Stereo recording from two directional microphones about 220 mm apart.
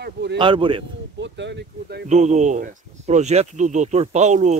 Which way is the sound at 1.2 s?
50° right (ahead or behind).